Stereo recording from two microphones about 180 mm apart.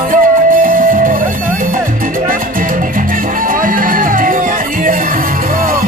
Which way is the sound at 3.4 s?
50° right (ahead or behind).